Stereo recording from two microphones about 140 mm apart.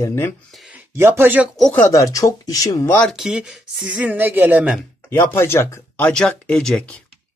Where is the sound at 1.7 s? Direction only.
20° left (ahead or behind).